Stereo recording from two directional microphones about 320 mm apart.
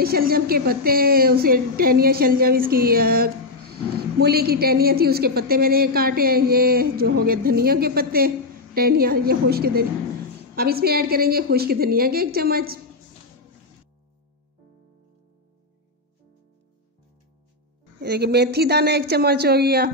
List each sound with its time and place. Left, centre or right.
0.0 s a woman's voice: right
18.0 s a woman's voice: right